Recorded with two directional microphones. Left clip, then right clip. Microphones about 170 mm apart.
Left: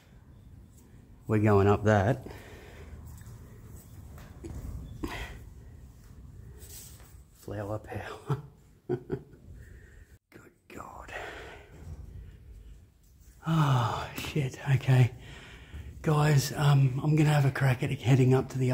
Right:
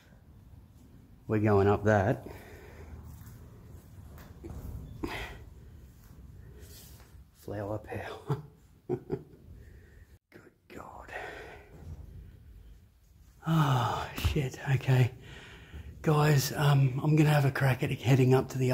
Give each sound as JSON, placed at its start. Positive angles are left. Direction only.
{"t": 1.2, "sound": "speech", "side_deg": 25}
{"t": 5.0, "sound": "a sound", "side_deg": 10}
{"t": 7.4, "sound": "speech", "side_deg": 10}
{"t": 8.8, "sound": "a sound", "side_deg": 10}
{"t": 10.3, "sound": "whispering", "side_deg": 20}
{"t": 13.4, "sound": "speech", "side_deg": 10}